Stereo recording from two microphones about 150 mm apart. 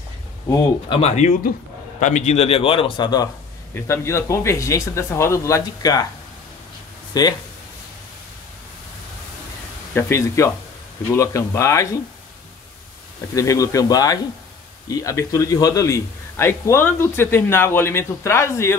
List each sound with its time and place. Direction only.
0.8 s a man's voice: 35° left (ahead or behind)
2.0 s a man's voice: 55° left (ahead or behind); by 3.3 s 30° left (ahead or behind)
3.7 s speech: 15° left (ahead or behind)
7.1 s speech: 25° left (ahead or behind)
9.9 s speech: 20° left (ahead or behind)
13.3 s a man's voice: 20° left (ahead or behind)